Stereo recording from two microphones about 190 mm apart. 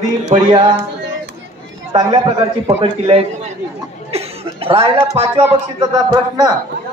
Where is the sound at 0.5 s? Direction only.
25° right (ahead or behind).